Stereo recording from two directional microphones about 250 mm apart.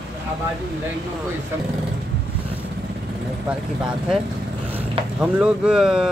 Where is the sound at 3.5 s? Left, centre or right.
Centre.